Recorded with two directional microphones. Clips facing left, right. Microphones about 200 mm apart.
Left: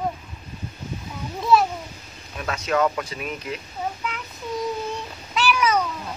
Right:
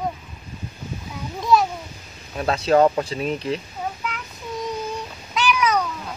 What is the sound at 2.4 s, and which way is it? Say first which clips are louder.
Speech: right 6 dB; 30° right (ahead or behind).